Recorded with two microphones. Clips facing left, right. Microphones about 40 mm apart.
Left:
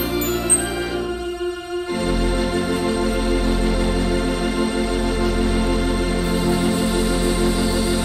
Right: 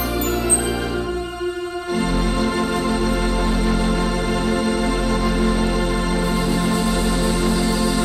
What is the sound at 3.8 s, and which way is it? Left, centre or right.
Organ, right.